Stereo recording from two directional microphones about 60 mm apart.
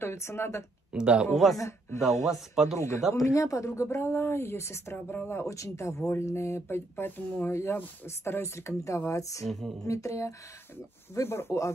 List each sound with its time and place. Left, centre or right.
0.0 s a woman's voice: left
0.9 s speech: centre
1.3 s speech: centre
1.6 s a woman's voice: left
2.5 s speech: centre
3.3 s a woman's voice: left
5.4 s a woman's voice: left
7.4 s a woman's voice: left
9.5 s speech: centre
9.8 s speech: left
11.1 s a woman's voice: left